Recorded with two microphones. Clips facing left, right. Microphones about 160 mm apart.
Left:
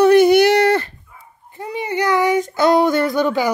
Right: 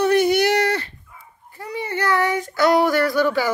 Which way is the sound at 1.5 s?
20° left (ahead or behind).